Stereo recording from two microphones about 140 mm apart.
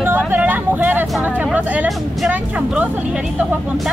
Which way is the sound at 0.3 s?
10° right (ahead or behind).